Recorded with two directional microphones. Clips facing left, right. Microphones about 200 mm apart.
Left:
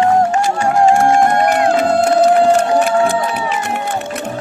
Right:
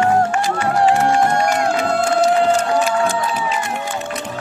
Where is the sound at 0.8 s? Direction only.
50° left (ahead or behind).